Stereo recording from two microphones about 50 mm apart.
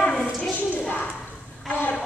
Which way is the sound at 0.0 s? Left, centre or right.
Left.